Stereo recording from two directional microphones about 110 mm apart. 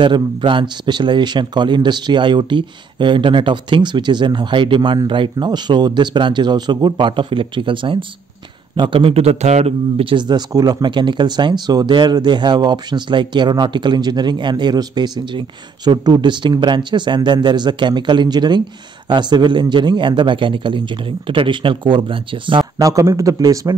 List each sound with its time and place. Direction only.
0.0 s a man's voice: 50° right (ahead or behind)
22.8 s a man's voice: 30° right (ahead or behind)